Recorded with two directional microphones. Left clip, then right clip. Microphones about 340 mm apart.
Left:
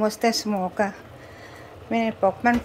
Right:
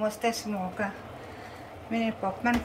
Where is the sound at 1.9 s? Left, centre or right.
Centre.